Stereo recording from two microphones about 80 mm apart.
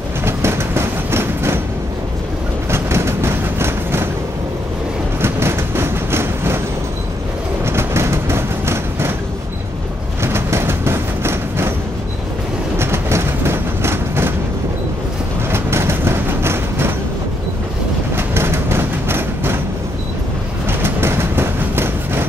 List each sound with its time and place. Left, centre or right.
0.2 s train: right
2.7 s train: right
5.2 s train: right
7.6 s train: right
10.2 s train: right
12.7 s train: right
15.5 s train: right
18.1 s a sound: right
20.8 s train: right